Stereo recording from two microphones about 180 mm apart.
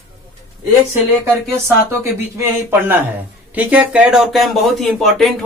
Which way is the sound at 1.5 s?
15° right (ahead or behind).